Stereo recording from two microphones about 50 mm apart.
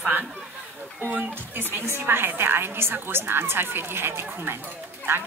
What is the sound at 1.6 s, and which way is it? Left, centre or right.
A woman's voice, right.